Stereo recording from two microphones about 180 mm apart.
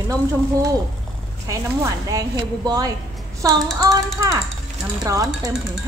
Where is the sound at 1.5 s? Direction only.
20° right (ahead or behind).